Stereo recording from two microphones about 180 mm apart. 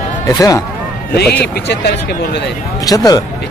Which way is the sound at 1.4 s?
65° left (ahead or behind).